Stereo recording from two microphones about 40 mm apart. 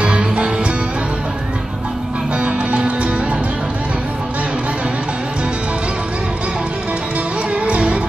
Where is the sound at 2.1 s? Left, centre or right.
Right.